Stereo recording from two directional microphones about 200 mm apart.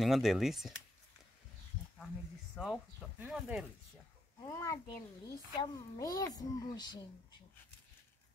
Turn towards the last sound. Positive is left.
turn(degrees=20)  # may be behind; listen again after turning